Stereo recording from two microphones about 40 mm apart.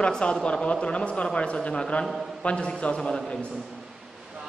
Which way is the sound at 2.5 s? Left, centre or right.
Left.